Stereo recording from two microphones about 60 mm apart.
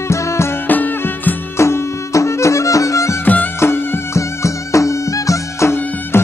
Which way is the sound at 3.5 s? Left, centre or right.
Left.